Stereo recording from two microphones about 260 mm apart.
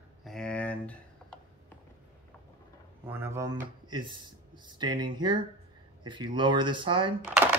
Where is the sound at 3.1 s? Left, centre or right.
Centre.